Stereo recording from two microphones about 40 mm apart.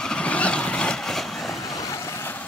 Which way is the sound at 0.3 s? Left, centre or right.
Left.